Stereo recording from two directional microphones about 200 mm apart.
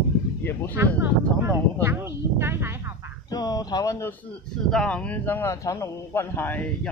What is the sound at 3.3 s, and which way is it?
Speech, 20° left (ahead or behind).